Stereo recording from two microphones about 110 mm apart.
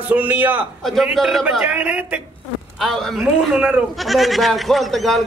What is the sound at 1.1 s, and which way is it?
Speech, centre (ahead or behind).